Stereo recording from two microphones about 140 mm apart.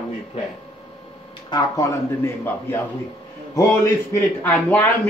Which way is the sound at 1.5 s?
25° left (ahead or behind).